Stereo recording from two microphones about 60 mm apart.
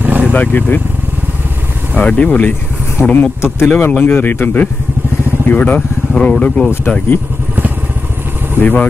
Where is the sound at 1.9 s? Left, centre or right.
Left.